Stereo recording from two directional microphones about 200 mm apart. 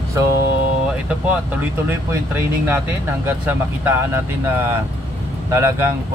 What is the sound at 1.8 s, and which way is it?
Speech, 10° right (ahead or behind).